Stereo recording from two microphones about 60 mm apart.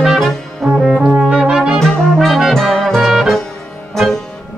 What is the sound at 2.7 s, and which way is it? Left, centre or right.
Music, centre.